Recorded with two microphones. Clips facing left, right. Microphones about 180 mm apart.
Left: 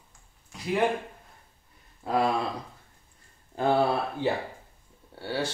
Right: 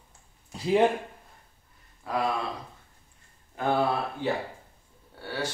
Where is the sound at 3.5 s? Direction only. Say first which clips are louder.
Left 3 dB; 30° left (ahead or behind).